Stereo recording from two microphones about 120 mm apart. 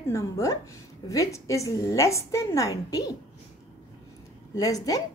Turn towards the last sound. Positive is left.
turn(degrees=30)  # may be behind; listen again after turning